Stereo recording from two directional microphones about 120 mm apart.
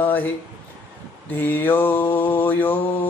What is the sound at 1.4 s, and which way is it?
Mantra, 15° left (ahead or behind).